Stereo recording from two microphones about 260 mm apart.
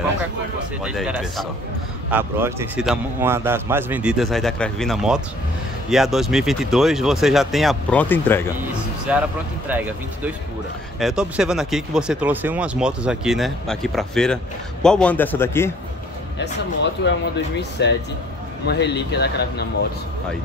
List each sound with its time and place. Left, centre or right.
0.8 s speech: centre
9.1 s speech: centre
16.3 s speech: left